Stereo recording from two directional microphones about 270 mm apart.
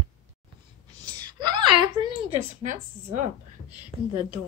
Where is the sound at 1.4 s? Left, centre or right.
Centre.